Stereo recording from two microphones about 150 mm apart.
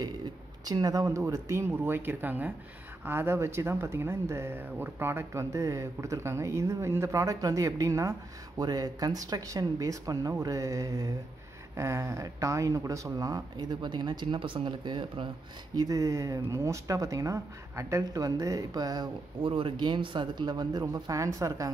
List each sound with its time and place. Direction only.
0.0 s speech: 25° right (ahead or behind)